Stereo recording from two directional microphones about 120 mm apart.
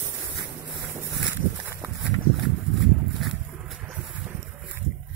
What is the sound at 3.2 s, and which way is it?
Boat, centre (ahead or behind).